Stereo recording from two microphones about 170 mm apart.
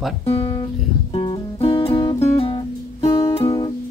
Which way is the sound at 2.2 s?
35° left (ahead or behind).